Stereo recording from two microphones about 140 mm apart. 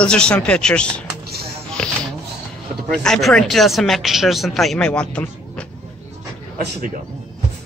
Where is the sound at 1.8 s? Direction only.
5° left (ahead or behind).